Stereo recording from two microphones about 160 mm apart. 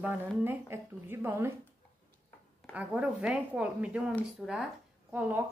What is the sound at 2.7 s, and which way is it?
Speech, 10° right (ahead or behind).